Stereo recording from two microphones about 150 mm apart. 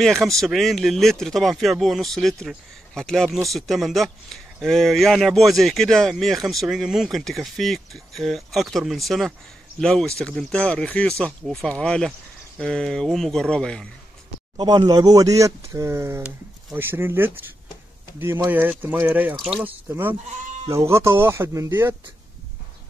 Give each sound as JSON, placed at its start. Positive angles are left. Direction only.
{"t": 0.0, "sound": "speech", "side_deg": 0}
{"t": 14.6, "sound": "speech", "side_deg": -30}